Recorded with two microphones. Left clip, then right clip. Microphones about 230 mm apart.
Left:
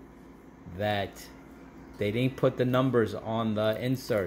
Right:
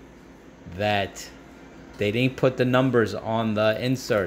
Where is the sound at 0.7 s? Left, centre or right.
Centre.